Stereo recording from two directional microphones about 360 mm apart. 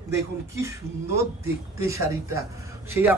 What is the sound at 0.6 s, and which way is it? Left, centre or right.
Speech, centre.